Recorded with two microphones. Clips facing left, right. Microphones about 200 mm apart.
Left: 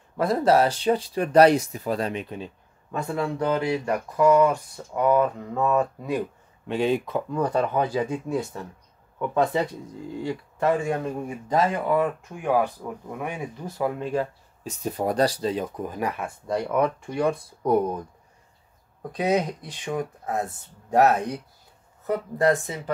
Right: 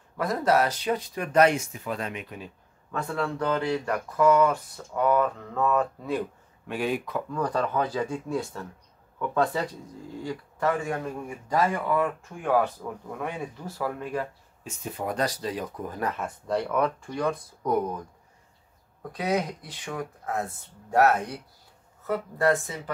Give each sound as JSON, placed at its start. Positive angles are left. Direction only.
{"t": 0.2, "sound": "speech", "side_deg": 30}
{"t": 17.2, "sound": "speech", "side_deg": 30}
{"t": 19.1, "sound": "speech", "side_deg": 25}